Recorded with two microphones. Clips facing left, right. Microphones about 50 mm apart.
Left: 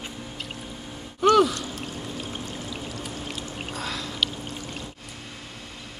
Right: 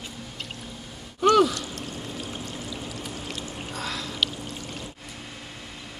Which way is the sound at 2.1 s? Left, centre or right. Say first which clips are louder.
Left 1 dB; left.